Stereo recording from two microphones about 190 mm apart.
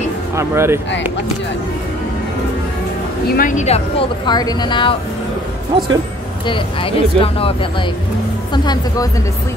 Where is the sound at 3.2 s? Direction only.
45° left (ahead or behind); by 4.9 s 25° left (ahead or behind).